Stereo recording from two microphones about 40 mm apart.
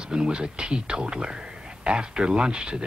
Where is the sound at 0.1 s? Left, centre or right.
Right.